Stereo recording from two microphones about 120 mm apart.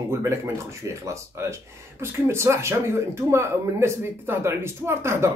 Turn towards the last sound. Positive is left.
turn(degrees=-20)  # may be behind; listen again after turning